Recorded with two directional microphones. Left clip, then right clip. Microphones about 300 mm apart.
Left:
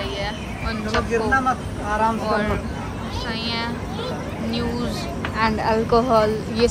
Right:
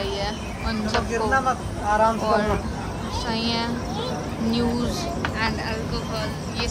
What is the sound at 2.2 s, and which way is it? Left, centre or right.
Speech, centre.